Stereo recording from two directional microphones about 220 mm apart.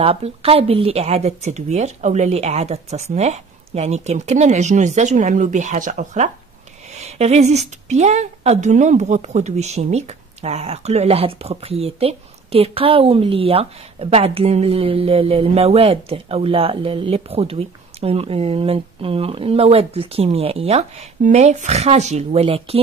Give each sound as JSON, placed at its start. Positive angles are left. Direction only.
{"t": 0.0, "sound": "speech", "side_deg": -25}